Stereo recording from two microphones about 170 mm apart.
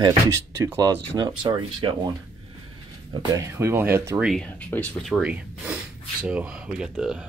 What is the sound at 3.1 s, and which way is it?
Speech, 20° right (ahead or behind).